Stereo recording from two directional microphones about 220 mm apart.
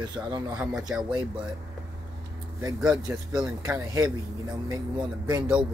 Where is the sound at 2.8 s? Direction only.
5° right (ahead or behind).